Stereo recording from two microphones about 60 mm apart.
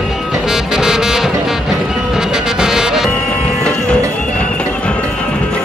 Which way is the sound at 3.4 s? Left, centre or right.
Centre.